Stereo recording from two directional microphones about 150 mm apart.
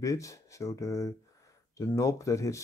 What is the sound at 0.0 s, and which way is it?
Speech, 20° left (ahead or behind).